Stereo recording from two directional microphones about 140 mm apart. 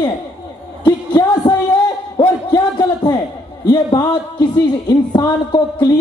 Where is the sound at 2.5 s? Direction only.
25° left (ahead or behind).